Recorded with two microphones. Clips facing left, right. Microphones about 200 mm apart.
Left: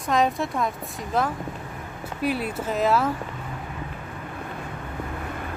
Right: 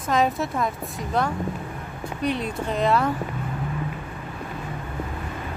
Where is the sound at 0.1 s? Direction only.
Centre (ahead or behind).